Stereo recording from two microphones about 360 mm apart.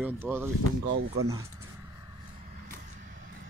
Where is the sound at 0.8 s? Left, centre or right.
Right.